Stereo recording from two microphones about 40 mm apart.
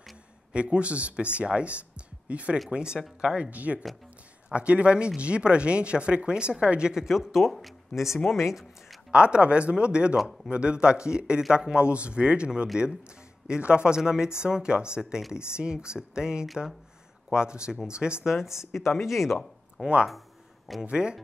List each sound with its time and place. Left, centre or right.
0.5 s speech: right
2.7 s speech: right
3.4 s speech: right
6.9 s speech: centre
9.1 s speech: right
18.3 s speech: centre
20.8 s speech: right